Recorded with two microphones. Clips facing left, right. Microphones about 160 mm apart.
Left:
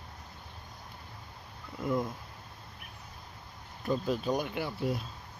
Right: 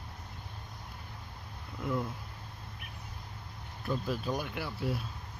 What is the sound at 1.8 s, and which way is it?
Speech, 15° left (ahead or behind).